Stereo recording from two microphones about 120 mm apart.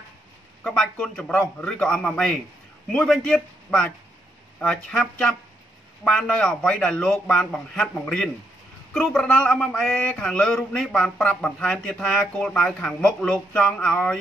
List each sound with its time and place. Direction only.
0.7 s a man's voice: 5° left (ahead or behind)